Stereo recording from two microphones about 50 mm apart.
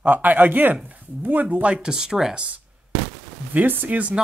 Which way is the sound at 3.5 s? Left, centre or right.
Right.